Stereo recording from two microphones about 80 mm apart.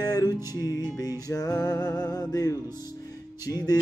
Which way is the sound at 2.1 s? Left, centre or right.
Left.